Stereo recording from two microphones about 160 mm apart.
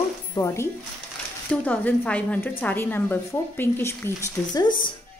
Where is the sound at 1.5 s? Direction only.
10° left (ahead or behind).